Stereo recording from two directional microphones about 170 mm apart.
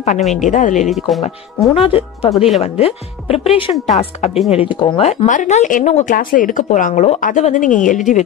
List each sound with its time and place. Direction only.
0.3 s speech: 45° left (ahead or behind)
0.8 s speech: centre (ahead or behind)
1.7 s speech: 35° left (ahead or behind)
2.3 s speech: centre (ahead or behind)
2.6 s speech: 35° left (ahead or behind)